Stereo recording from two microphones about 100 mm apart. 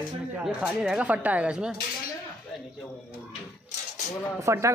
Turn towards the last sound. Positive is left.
turn(degrees=-30)  # may be behind; listen again after turning